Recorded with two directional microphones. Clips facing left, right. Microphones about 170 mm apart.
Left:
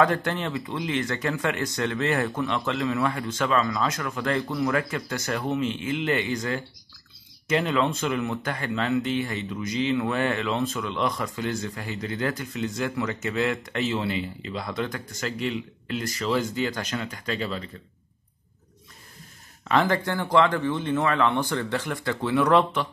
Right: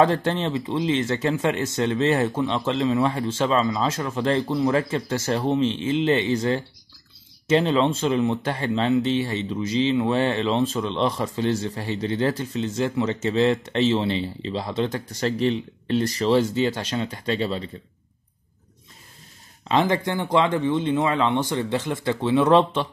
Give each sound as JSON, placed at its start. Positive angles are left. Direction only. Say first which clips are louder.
{"t": 0.0, "sound": "speech", "louder": "right 3 dB", "side_deg": -25}
{"t": 19.6, "sound": "speech", "louder": "right 2 dB", "side_deg": -20}